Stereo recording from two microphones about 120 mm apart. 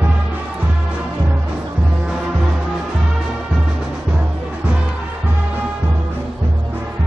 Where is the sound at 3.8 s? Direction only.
5° right (ahead or behind).